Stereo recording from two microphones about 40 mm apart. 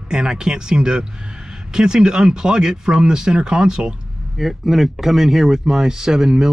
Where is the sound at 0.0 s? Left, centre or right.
Centre.